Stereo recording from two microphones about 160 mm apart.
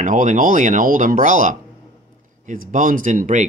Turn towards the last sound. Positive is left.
turn(degrees=-50)  # may be behind; listen again after turning